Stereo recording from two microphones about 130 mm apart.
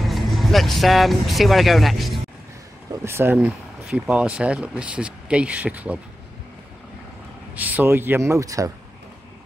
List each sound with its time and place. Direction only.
0.0 s speech: centre (ahead or behind)
3.1 s speech: 20° right (ahead or behind)
7.5 s speech: 10° right (ahead or behind)